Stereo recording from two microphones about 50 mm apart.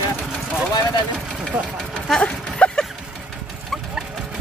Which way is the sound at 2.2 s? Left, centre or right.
Left.